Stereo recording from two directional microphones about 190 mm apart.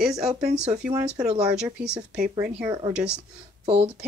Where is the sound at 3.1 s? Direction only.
35° right (ahead or behind).